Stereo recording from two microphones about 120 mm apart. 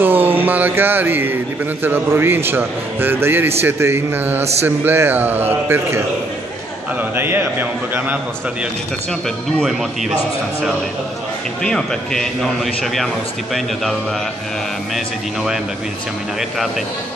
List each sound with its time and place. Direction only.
0.0 s a man's voice: 15° right (ahead or behind)
9.6 s speech: centre (ahead or behind)
11.6 s speech: 5° left (ahead or behind)